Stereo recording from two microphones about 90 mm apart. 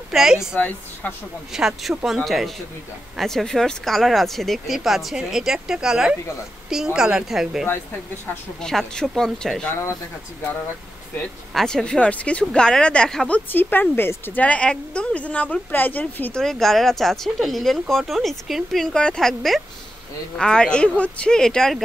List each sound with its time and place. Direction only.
0.1 s a woman's voice: 5° right (ahead or behind)
0.6 s speech: 15° left (ahead or behind)
1.5 s a woman's voice: 5° right (ahead or behind)
7.6 s speech: 25° left (ahead or behind)
8.5 s speech: 5° left (ahead or behind)
11.5 s speech: 5° left (ahead or behind)
13.5 s speech: 20° left (ahead or behind)
16.3 s speech: 5° left (ahead or behind)